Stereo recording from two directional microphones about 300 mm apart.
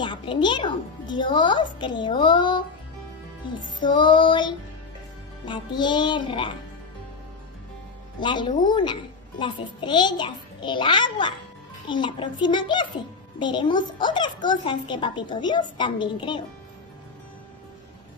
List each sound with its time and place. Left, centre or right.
0.0 s a child's voice: centre
3.8 s a child's voice: centre
8.2 s a child's voice: centre